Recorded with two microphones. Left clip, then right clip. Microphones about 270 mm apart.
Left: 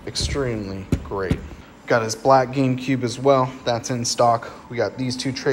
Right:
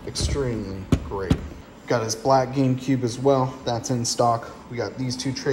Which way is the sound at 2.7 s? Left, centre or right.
Centre.